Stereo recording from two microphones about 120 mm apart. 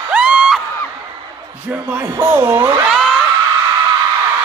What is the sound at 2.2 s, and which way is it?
Speech, 20° right (ahead or behind).